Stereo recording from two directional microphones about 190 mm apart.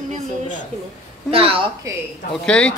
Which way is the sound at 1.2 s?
30° right (ahead or behind).